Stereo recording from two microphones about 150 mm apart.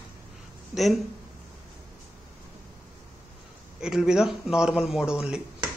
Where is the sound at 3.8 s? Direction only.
5° right (ahead or behind).